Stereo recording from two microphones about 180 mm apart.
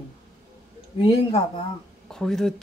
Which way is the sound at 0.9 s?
30° left (ahead or behind).